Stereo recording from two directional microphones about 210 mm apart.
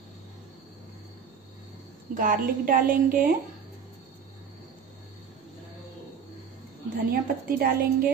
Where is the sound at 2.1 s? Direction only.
40° right (ahead or behind).